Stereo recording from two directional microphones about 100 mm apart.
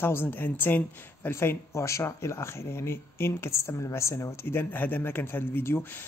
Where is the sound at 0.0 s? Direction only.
20° left (ahead or behind).